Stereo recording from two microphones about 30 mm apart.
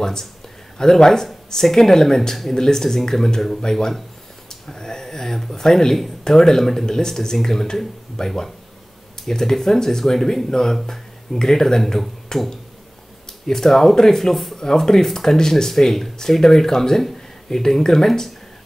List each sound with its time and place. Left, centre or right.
0.0 s speech: centre
13.5 s speech: centre